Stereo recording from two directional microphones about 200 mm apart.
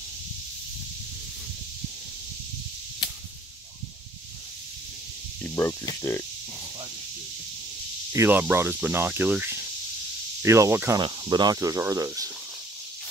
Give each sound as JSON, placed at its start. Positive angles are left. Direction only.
{"t": 5.4, "sound": "speech", "side_deg": 10}
{"t": 8.1, "sound": "cricket", "side_deg": -10}